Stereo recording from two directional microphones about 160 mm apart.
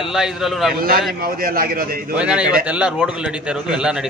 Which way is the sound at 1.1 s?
65° right (ahead or behind).